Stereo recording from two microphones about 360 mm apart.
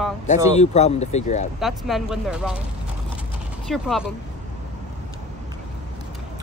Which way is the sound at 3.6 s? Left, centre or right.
Centre.